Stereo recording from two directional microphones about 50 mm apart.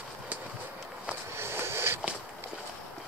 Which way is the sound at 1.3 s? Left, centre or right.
Right.